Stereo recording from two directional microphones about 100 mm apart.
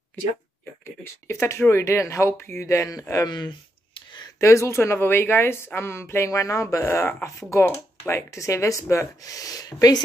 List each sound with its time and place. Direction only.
1.2 s speech: 30° left (ahead or behind)
3.3 s a sound: 50° left (ahead or behind)
4.4 s speech: 30° left (ahead or behind)